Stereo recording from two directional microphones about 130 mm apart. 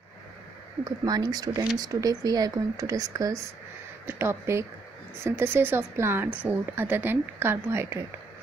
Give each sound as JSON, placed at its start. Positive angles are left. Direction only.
{"t": 0.8, "sound": "speech", "side_deg": -30}